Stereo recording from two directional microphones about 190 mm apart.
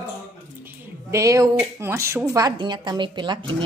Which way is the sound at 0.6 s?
15° right (ahead or behind).